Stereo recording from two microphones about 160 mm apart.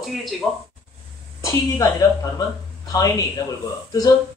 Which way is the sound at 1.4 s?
20° left (ahead or behind).